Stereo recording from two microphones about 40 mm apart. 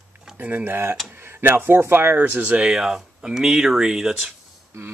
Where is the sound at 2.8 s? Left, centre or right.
Centre.